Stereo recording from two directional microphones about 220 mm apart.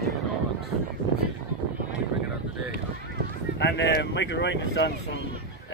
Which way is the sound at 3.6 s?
55° left (ahead or behind).